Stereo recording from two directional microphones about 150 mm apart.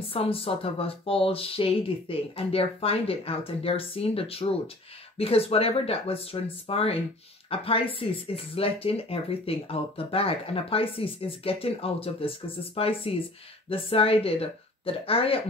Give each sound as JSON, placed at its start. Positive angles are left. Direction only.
{"t": 0.1, "sound": "speech", "side_deg": 40}